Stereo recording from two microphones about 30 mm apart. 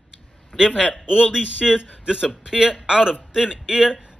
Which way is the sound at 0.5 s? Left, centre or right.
Centre.